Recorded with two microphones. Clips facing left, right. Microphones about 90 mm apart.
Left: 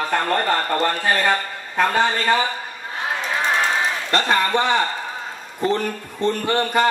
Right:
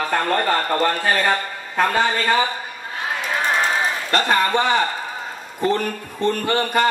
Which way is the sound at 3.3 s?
Centre (ahead or behind).